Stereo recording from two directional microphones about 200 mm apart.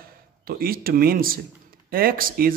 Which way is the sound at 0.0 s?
45° right (ahead or behind).